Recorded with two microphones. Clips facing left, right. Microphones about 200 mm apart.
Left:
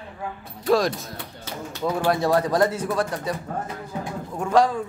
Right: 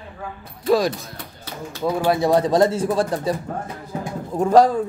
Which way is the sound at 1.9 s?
5° right (ahead or behind).